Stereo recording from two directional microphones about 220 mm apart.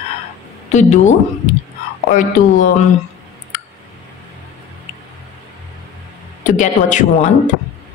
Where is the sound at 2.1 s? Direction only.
35° left (ahead or behind).